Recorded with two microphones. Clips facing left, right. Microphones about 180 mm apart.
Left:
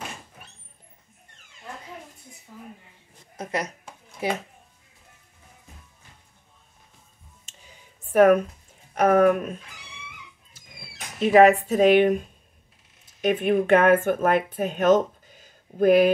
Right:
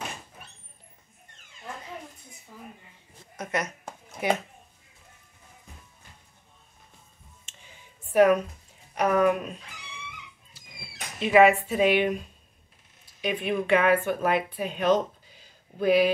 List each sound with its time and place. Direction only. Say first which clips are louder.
3.3 s speech: left 1 dB; 30° left (ahead or behind)
7.4 s a sound: left 1 dB; 40° left (ahead or behind)
8.9 s speech: left 4 dB; 45° left (ahead or behind)
11.1 s speech: left 3 dB; 40° left (ahead or behind)